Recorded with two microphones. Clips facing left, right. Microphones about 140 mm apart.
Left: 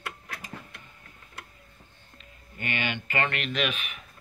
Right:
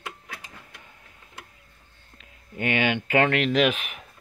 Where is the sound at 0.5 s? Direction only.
55° left (ahead or behind).